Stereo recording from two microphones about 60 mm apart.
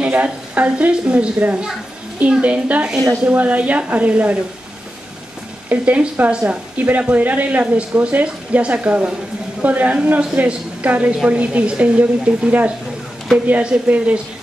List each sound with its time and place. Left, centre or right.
0.0 s a woman's voice: right
5.7 s a woman's voice: right